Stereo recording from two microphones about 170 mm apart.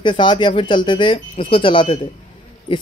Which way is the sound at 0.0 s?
30° left (ahead or behind).